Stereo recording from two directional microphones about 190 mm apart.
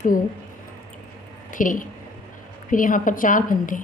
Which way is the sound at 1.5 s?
45° left (ahead or behind).